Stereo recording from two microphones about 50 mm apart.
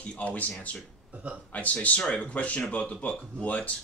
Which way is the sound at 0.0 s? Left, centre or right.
Left.